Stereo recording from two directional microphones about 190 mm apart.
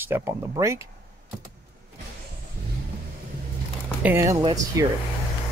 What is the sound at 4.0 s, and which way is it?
Speech, 15° right (ahead or behind).